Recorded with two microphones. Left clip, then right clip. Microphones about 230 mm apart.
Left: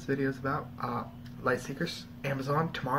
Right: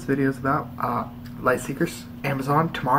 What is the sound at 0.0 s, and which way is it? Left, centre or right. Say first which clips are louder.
Speech: right 8 dB; centre.